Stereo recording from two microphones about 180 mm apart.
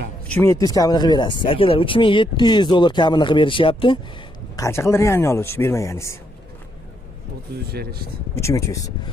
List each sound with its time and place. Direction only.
0.3 s speech: 15° left (ahead or behind)
4.6 s speech: 15° left (ahead or behind)
7.7 s speech: 60° right (ahead or behind)
8.4 s speech: 15° left (ahead or behind)